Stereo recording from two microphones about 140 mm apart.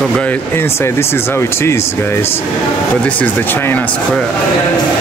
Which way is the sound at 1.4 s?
20° left (ahead or behind).